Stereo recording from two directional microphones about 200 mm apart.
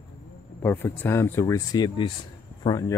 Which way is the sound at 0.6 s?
10° left (ahead or behind).